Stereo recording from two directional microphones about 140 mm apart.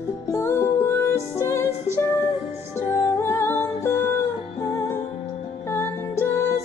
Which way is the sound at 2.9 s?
20° left (ahead or behind).